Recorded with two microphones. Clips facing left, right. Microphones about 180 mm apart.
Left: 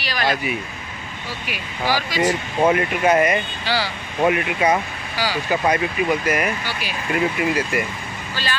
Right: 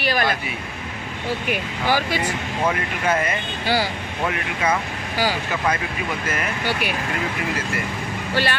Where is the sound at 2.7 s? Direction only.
20° left (ahead or behind).